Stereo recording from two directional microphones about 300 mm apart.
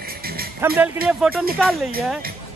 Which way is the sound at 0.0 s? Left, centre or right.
Right.